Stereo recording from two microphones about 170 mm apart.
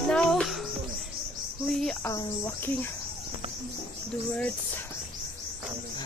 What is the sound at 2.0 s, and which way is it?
Speech, 15° left (ahead or behind).